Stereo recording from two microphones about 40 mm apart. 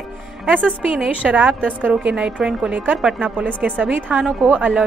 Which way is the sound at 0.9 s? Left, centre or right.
Right.